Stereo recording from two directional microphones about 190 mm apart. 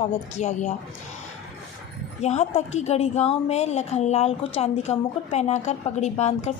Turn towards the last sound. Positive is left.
turn(degrees=35)  # may be behind; listen again after turning